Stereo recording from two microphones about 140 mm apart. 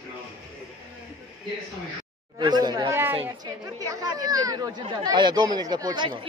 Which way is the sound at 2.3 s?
30° right (ahead or behind).